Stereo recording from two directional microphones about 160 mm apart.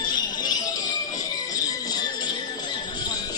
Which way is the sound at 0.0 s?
25° left (ahead or behind).